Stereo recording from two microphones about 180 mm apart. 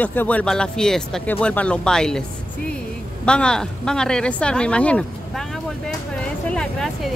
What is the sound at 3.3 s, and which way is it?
Speech, 5° left (ahead or behind).